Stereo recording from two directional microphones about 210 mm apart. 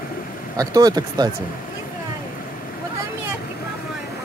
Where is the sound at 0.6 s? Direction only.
20° right (ahead or behind).